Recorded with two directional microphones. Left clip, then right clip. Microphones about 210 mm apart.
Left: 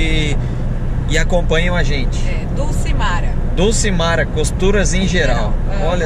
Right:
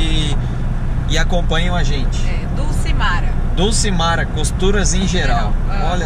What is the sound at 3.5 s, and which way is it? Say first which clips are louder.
Speech: left 2 dB; centre (ahead or behind).